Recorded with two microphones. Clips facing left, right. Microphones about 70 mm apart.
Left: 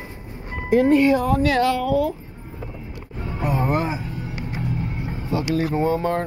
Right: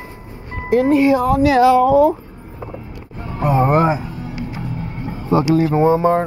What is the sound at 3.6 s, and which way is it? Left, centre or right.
Music, right.